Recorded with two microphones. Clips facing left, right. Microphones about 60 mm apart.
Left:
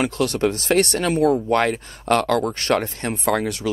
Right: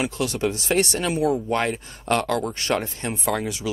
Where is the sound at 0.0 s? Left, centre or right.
Left.